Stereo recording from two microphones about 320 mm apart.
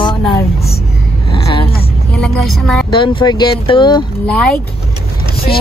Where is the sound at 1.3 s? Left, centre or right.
Centre.